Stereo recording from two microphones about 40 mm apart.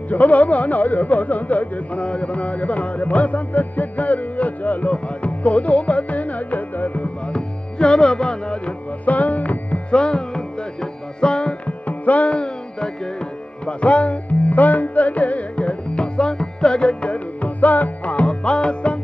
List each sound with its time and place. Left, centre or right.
0.1 s music: left
7.3 s music: left
9.0 s music: left
9.8 s music: left
11.6 s music: left